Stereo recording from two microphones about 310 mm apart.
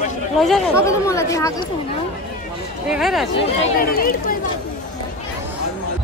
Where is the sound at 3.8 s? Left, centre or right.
Left.